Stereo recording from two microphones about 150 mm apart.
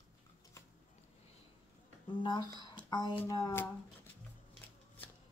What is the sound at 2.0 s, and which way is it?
Speech, 30° left (ahead or behind).